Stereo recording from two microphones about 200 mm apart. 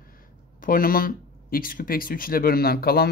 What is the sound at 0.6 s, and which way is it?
Speech, 45° left (ahead or behind).